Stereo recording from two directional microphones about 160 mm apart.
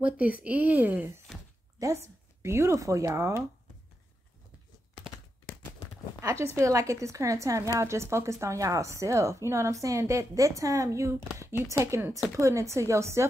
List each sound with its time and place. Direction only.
0.4 s speech: 10° right (ahead or behind)
2.4 s speech: 15° right (ahead or behind)
6.2 s a woman's voice: 15° right (ahead or behind)